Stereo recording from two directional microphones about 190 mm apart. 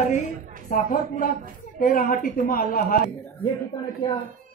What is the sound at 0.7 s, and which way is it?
Speech, 40° left (ahead or behind).